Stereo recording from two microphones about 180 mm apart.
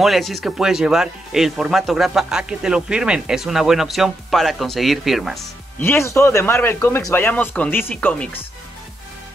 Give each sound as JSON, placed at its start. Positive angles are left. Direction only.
{"t": 0.0, "sound": "speech", "side_deg": 0}
{"t": 5.8, "sound": "speech", "side_deg": 15}